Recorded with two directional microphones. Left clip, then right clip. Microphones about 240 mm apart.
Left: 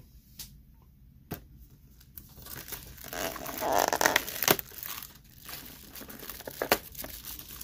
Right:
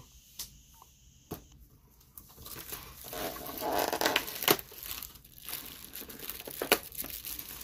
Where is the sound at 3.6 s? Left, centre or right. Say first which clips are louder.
Left 5 dB; left.